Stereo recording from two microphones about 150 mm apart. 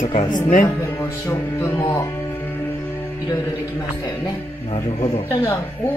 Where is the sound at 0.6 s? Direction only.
15° left (ahead or behind).